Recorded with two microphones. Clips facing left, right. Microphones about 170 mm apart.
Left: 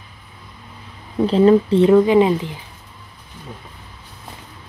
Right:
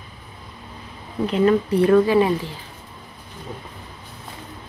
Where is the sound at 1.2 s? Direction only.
30° left (ahead or behind).